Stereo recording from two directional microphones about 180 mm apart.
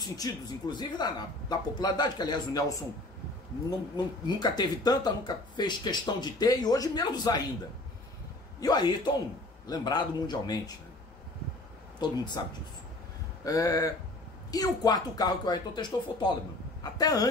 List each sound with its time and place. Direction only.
0.2 s speech: 25° left (ahead or behind)
3.9 s speech: 25° left (ahead or behind)
8.5 s speech: 20° left (ahead or behind)
12.0 s speech: 25° left (ahead or behind)